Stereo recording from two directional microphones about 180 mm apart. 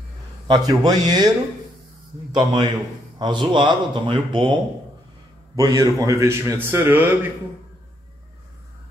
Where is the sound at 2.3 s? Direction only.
25° right (ahead or behind).